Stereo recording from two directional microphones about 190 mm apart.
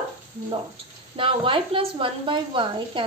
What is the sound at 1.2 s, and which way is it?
A woman's voice, 25° right (ahead or behind).